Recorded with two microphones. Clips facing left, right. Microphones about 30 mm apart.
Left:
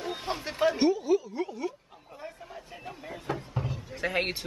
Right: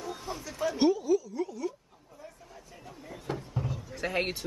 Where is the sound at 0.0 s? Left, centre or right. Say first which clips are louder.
Left 5 dB; left.